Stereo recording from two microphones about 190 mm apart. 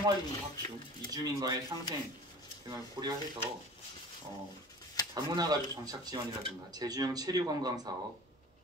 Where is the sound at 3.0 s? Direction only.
20° right (ahead or behind).